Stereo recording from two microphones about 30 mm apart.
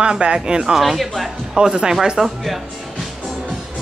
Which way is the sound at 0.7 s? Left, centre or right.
Centre.